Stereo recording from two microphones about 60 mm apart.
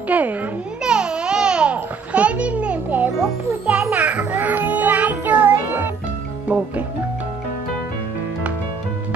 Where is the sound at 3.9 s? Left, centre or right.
Right.